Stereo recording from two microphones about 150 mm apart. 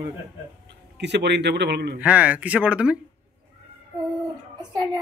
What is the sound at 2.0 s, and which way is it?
Speech, 10° right (ahead or behind).